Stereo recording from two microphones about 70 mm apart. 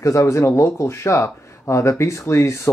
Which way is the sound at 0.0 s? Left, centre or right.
Left.